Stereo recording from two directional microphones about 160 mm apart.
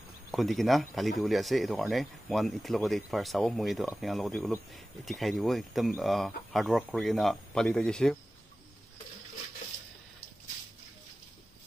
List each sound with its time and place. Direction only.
0.3 s speech: centre (ahead or behind)